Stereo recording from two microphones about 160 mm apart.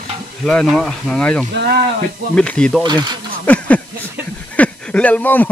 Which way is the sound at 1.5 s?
85° right.